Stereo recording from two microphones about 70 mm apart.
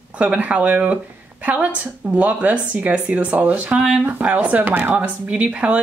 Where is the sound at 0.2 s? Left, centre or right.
Centre.